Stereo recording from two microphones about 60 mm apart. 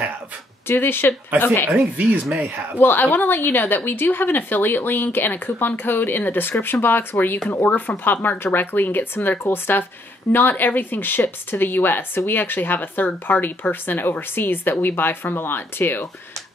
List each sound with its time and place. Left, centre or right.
0.7 s speech: left
1.8 s speech: right
2.2 s speech: centre
2.8 s speech: left